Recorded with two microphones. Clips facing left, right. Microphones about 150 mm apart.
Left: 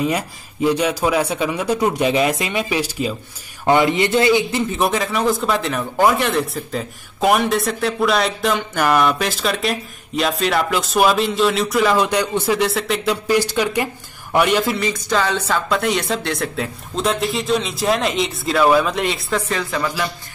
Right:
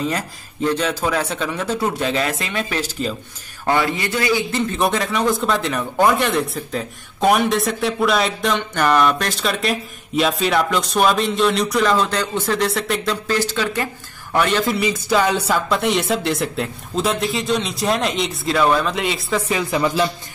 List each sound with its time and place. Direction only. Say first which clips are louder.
0.0 s a man's voice: left 3 dB; 10° left (ahead or behind)
14.8 s music: right 2 dB; 10° right (ahead or behind)
15.7 s a man's voice: even; centre (ahead or behind)
19.5 s speech: right 3 dB; 20° right (ahead or behind)